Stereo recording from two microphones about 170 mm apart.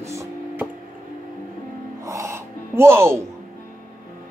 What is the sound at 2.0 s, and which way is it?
Gasp, 20° right (ahead or behind).